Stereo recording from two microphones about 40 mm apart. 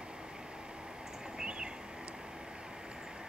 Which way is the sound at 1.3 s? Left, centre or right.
Right.